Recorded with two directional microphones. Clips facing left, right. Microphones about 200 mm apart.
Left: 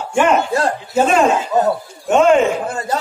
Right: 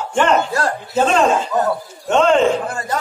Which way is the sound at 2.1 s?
10° left (ahead or behind).